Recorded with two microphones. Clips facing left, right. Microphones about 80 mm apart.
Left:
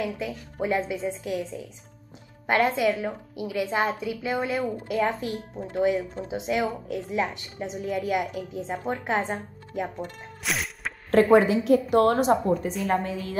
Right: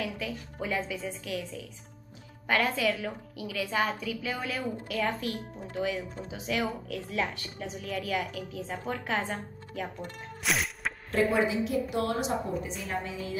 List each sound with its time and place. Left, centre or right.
0.0 s a woman's voice: left
10.4 s music: centre
11.1 s a woman's voice: left